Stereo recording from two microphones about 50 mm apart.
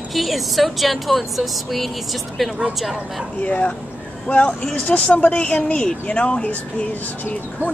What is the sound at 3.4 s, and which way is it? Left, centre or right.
Speech, left.